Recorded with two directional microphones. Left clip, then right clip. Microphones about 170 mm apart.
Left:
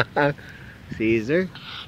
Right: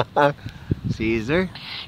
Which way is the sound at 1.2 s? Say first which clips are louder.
Even; 50° right (ahead or behind).